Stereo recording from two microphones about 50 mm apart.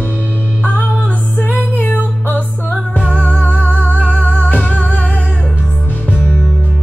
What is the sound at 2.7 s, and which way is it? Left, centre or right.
Music, centre.